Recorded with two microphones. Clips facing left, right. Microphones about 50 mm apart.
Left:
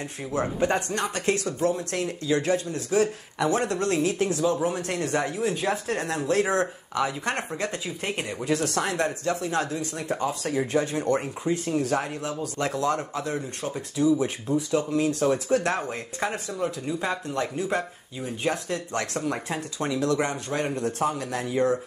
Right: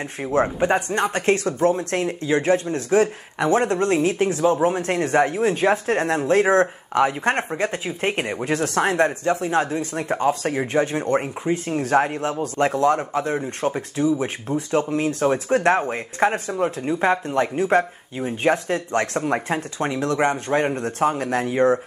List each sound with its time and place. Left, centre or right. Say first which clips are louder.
0.2 s speech: right 8 dB; right
0.6 s speech: right 5 dB; right